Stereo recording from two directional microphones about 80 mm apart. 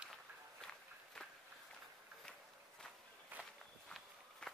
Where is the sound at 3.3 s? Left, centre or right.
Right.